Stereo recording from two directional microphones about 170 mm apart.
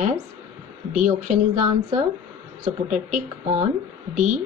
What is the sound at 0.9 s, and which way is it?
Speech, 45° right (ahead or behind).